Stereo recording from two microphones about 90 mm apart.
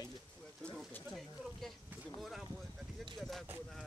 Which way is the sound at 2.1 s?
Centre (ahead or behind).